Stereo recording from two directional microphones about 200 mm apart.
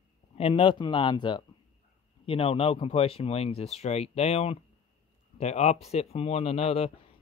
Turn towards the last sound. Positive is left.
turn(degrees=30)  # may be behind; listen again after turning